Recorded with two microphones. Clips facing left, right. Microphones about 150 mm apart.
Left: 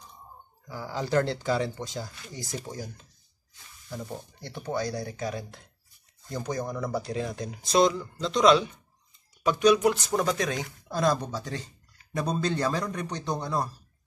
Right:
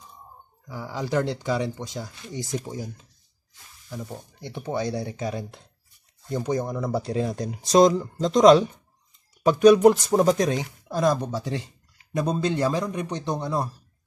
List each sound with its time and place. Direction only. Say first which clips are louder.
0.7 s speech: right 1 dB; 10° right (ahead or behind)
3.9 s speech: right 1 dB; 5° right (ahead or behind)
4.4 s speech: right 3 dB; 15° right (ahead or behind)
4.8 s speech: right 3 dB; 30° right (ahead or behind)
10.6 s speech: right 3 dB; 15° right (ahead or behind)
13.3 s speech: right 2 dB; 10° right (ahead or behind)